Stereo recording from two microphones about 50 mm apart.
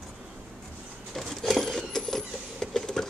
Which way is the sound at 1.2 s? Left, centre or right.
Centre.